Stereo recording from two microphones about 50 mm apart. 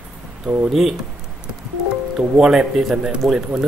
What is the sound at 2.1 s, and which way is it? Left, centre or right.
Speech, centre.